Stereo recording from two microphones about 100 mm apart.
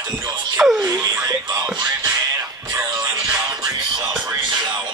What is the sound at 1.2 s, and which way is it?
Speech, 40° right (ahead or behind).